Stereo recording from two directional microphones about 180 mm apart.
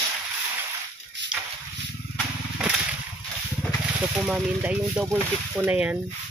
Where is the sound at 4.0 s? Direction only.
5° right (ahead or behind).